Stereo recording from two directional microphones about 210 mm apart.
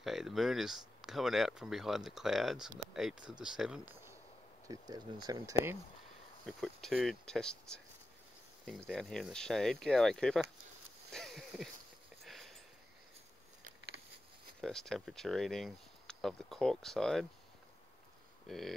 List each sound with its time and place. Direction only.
0.0 s speech: centre (ahead or behind)
4.6 s speech: 20° right (ahead or behind)
6.4 s speech: centre (ahead or behind)
11.1 s a sound: centre (ahead or behind)
12.2 s sniff: centre (ahead or behind)
14.6 s speech: centre (ahead or behind)
18.5 s speech: centre (ahead or behind)